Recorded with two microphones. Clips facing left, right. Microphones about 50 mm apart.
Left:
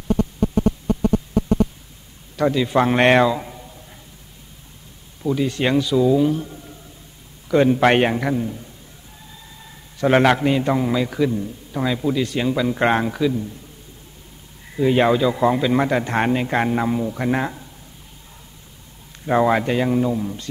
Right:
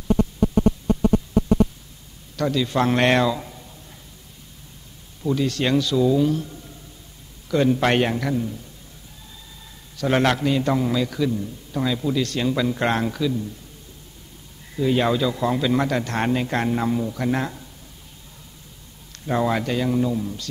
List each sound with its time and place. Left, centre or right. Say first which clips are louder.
2.3 s a man's voice: left 4 dB; left
5.2 s a man's voice: left 2 dB; centre
9.9 s a man's voice: left 4 dB; left
14.8 s a man's voice: left 4 dB; left
19.2 s a man's voice: left 5 dB; left